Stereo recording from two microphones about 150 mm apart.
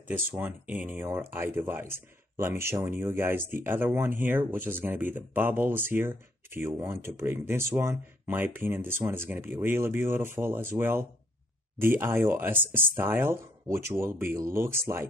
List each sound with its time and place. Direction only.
0.1 s speech: 10° right (ahead or behind)